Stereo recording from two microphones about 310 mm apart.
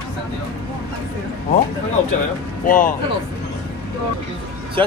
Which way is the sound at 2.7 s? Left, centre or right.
Left.